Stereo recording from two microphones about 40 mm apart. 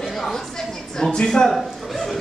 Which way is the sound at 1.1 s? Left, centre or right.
Centre.